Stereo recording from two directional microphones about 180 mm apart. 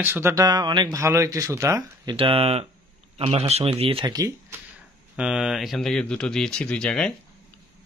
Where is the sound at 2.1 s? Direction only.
30° right (ahead or behind).